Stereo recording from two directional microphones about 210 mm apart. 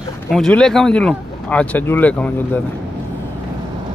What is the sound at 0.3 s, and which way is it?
Speech, centre (ahead or behind).